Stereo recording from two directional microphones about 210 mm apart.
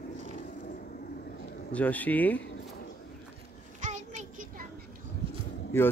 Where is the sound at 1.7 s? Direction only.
5° left (ahead or behind).